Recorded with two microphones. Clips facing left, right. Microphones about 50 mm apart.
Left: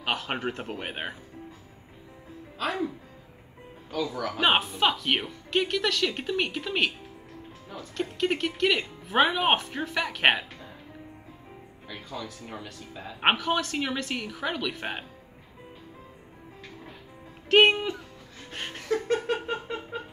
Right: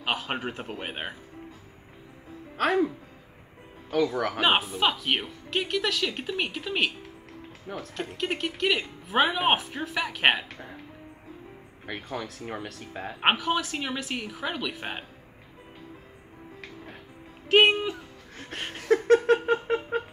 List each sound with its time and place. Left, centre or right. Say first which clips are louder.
0.0 s speech: even; centre
2.5 s speech: right 6 dB; right
3.9 s speech: right 5 dB; right
4.4 s speech: left 1 dB; centre
7.9 s speech: left 4 dB; centre
11.9 s speech: right 3 dB; right
13.2 s speech: even; centre
17.5 s speech: even; centre
18.6 s music: even; centre
19.3 s a sound: right 7 dB; right